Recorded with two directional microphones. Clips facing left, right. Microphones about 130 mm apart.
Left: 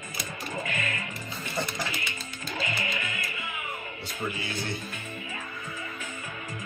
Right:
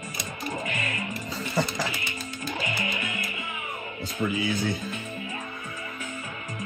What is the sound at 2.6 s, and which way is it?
Music, 25° right (ahead or behind).